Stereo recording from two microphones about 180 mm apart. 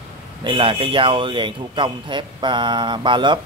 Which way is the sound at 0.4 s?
30° right (ahead or behind).